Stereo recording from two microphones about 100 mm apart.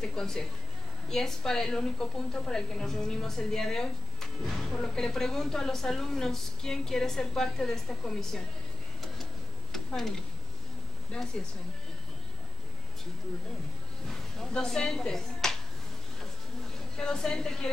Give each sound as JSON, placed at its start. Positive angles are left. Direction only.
{"t": 0.0, "sound": "a woman's voice", "side_deg": 5}
{"t": 9.0, "sound": "a sound", "side_deg": 0}
{"t": 11.2, "sound": "speech", "side_deg": 5}
{"t": 14.4, "sound": "a woman's voice", "side_deg": 5}
{"t": 16.9, "sound": "a woman's voice", "side_deg": 5}